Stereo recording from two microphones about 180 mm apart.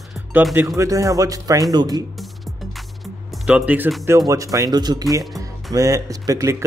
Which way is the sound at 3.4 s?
5° right (ahead or behind).